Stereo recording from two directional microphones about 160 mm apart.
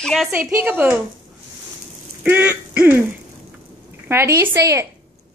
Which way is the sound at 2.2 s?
10° right (ahead or behind).